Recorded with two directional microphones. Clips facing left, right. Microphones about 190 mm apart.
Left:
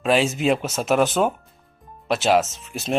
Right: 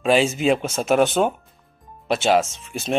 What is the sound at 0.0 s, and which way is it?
Speech, centre (ahead or behind).